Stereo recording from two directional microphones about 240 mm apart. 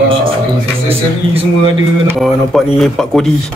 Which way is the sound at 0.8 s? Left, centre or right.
Right.